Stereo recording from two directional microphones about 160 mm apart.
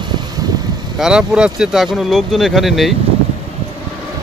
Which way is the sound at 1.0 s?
5° right (ahead or behind).